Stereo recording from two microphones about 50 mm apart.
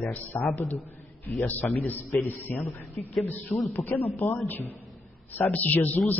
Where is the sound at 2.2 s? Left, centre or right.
Left.